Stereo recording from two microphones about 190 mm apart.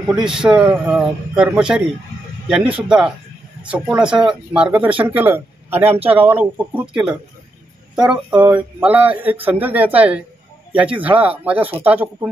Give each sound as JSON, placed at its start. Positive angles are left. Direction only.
{"t": 0.1, "sound": "a man's voice", "side_deg": -5}
{"t": 8.3, "sound": "a sound", "side_deg": -25}
{"t": 8.8, "sound": "speech", "side_deg": -10}